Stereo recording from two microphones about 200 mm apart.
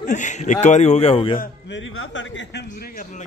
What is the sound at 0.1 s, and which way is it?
A man's voice, 35° left (ahead or behind).